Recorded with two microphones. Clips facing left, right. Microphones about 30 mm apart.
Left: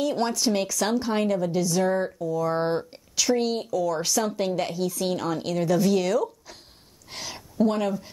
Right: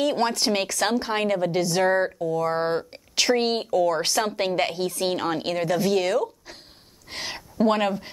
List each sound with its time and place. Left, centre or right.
0.0 s a woman's voice: right
3.2 s a woman's voice: right
5.8 s speech: centre
7.1 s a sound: right
7.6 s speech: right